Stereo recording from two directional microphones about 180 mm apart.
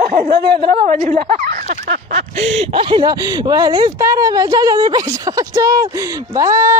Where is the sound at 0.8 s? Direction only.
40° right (ahead or behind).